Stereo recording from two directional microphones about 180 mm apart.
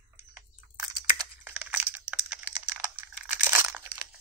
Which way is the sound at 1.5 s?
10° right (ahead or behind).